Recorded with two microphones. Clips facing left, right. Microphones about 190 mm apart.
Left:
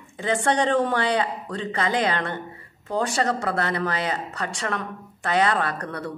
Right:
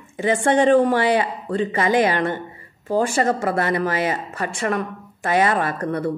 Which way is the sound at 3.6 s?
5° right (ahead or behind).